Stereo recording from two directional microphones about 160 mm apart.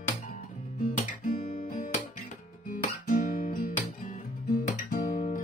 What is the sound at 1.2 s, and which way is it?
Guitar, 45° left (ahead or behind).